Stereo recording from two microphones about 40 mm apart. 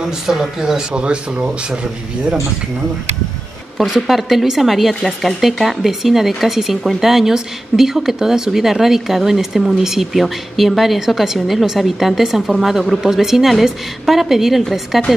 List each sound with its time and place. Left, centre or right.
0.0 s speech: centre
0.9 s speech: right
3.8 s speech: centre